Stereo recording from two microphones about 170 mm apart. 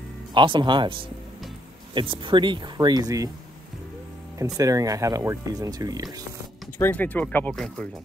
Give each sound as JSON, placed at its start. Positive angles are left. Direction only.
{"t": 0.3, "sound": "speech", "side_deg": -30}
{"t": 4.6, "sound": "speech", "side_deg": -20}
{"t": 6.8, "sound": "speech", "side_deg": 10}